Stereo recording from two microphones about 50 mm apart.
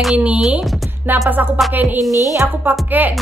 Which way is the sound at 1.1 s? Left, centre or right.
Right.